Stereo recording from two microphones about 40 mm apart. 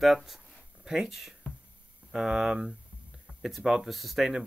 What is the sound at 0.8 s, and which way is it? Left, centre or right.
Speech, centre.